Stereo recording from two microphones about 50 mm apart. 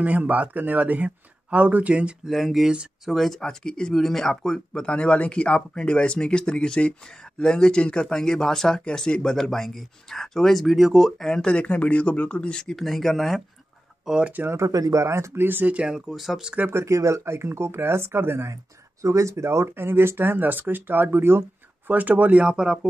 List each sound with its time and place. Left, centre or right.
0.0 s speech: right
2.2 s speech: centre
4.8 s speech: left
12.7 s speech: centre
14.0 s speech: centre
14.5 s speech: right
15.4 s speech: right
15.7 s speech: right
16.1 s speech: centre
16.7 s speech: right
19.0 s speech: right
21.9 s speech: right
22.4 s speech: right